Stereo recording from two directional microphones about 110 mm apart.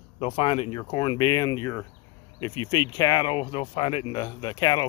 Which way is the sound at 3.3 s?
60° left (ahead or behind).